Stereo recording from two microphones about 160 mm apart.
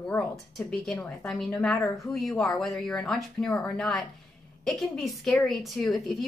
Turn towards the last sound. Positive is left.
turn(degrees=0)  # may be behind; listen again after turning